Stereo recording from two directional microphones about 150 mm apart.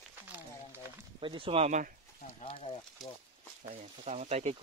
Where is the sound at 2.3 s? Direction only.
45° left (ahead or behind).